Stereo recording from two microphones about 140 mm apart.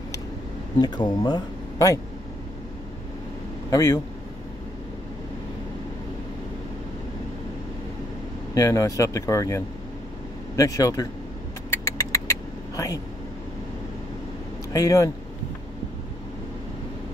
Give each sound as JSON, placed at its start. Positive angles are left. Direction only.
{"t": 0.7, "sound": "speech", "side_deg": 30}
{"t": 3.7, "sound": "speech", "side_deg": 20}
{"t": 8.5, "sound": "speech", "side_deg": 20}
{"t": 11.7, "sound": "vehicle", "side_deg": 20}
{"t": 14.7, "sound": "speech", "side_deg": 25}